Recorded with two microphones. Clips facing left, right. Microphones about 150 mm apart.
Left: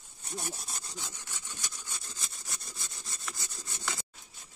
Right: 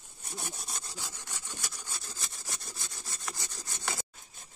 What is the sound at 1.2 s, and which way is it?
Wood, 15° right (ahead or behind).